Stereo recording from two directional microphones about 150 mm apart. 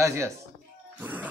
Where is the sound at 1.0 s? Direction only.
10° right (ahead or behind).